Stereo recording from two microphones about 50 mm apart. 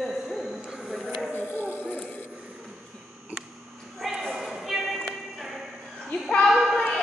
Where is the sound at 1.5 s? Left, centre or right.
Left.